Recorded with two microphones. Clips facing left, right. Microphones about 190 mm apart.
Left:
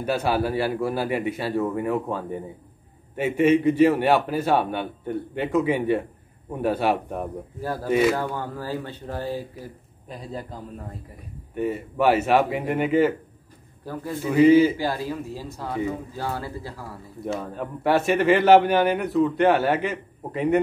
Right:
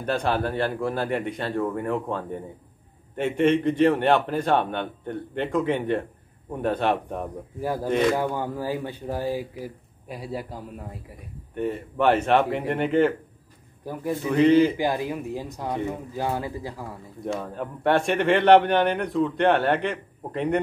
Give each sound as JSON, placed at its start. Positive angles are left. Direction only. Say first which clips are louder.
{"t": 0.0, "sound": "a man's voice", "louder": "left 1 dB", "side_deg": 5}
{"t": 7.6, "sound": "speech", "louder": "right 2 dB", "side_deg": -15}
{"t": 7.9, "sound": "a man's voice", "louder": "left 2 dB", "side_deg": 5}
{"t": 8.2, "sound": "speech", "louder": "right 2 dB", "side_deg": -15}
{"t": 11.5, "sound": "a man's voice", "louder": "left 1 dB", "side_deg": 5}
{"t": 13.9, "sound": "speech", "louder": "left 1 dB", "side_deg": -15}
{"t": 14.3, "sound": "a man's voice", "louder": "left 3 dB", "side_deg": 5}
{"t": 14.8, "sound": "speech", "louder": "right 1 dB", "side_deg": -20}
{"t": 17.2, "sound": "a man's voice", "louder": "left 1 dB", "side_deg": 0}